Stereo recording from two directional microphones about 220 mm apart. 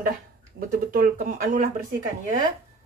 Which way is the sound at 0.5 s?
40° right (ahead or behind).